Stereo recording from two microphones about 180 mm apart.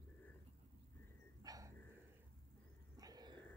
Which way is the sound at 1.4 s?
20° right (ahead or behind).